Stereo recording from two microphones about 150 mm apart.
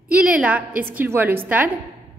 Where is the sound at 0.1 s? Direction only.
10° right (ahead or behind).